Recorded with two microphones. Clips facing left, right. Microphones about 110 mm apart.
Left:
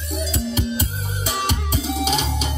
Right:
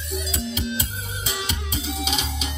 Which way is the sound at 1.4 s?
55° left (ahead or behind).